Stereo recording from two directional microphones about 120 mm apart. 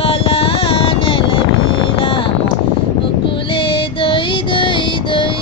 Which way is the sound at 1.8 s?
50° left (ahead or behind).